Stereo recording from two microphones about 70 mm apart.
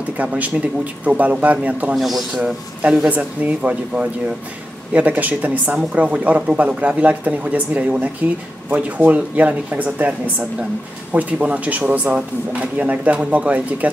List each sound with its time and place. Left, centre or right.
0.2 s speech: centre
2.0 s a man's voice: centre
2.4 s speech: centre